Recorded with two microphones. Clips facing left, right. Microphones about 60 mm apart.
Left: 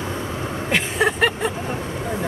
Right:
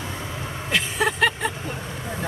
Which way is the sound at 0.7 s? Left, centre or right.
Left.